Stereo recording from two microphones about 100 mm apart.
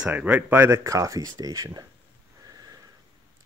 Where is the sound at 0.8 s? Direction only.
35° right (ahead or behind).